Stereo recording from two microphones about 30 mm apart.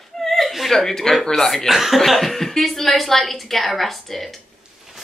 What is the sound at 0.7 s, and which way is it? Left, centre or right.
Speech, centre.